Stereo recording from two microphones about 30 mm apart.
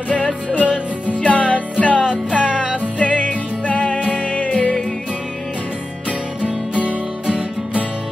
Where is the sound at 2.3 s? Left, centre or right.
Right.